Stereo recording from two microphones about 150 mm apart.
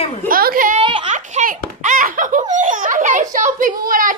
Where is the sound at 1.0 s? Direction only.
55° right (ahead or behind).